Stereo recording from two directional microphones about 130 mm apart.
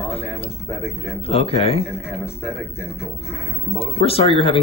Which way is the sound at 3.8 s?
50° left (ahead or behind).